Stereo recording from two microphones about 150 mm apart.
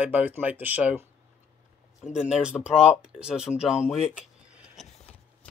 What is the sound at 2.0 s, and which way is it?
Speech, 50° left (ahead or behind).